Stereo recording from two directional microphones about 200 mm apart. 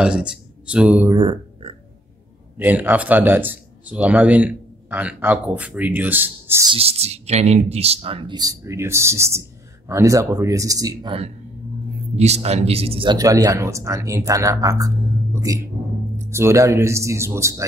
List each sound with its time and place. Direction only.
0.0 s speech: 5° right (ahead or behind)
1.1 s speech: 25° right (ahead or behind)
2.5 s speech: 10° right (ahead or behind)
6.7 s speech: 30° right (ahead or behind); by 17.6 s 15° right (ahead or behind)